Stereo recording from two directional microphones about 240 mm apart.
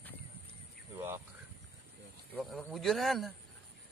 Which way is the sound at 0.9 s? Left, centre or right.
Centre.